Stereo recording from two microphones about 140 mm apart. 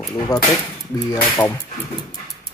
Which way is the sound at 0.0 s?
25° left (ahead or behind).